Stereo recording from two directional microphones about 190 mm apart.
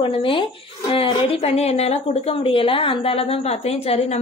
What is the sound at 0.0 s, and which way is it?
Speech, 25° left (ahead or behind).